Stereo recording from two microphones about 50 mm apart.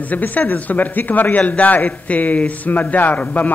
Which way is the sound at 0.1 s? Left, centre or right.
Left.